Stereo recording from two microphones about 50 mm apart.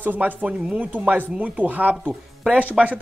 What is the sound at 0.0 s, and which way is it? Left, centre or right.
Speech, right.